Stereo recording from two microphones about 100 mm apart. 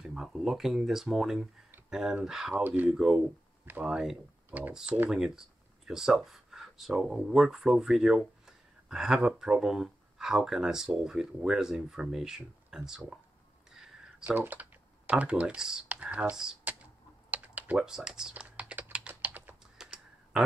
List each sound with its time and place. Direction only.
0.0 s speech: 5° right (ahead or behind)
2.5 s speech: 20° right (ahead or behind)
2.9 s speech: 5° right (ahead or behind)
3.6 s speech: 20° right (ahead or behind)
3.9 s speech: 5° right (ahead or behind)
4.5 s speech: 15° right (ahead or behind)
5.1 s speech: 5° right (ahead or behind)
14.2 s speech: 20° right (ahead or behind)
17.3 s typing: 15° right (ahead or behind)
18.3 s computer keyboard: 10° right (ahead or behind)
19.6 s typing: 5° right (ahead or behind)